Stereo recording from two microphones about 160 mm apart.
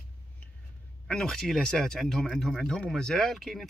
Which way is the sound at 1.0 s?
5° left (ahead or behind).